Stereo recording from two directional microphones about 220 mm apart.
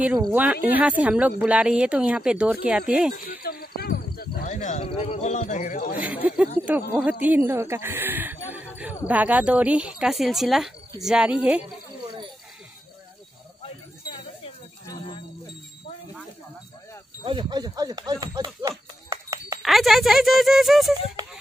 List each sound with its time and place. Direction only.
0.2 s speech: 10° right (ahead or behind)
3.2 s speech: 45° left (ahead or behind)
6.2 s speech: 5° right (ahead or behind)
17.2 s a sound: 20° right (ahead or behind)
19.6 s speech: centre (ahead or behind)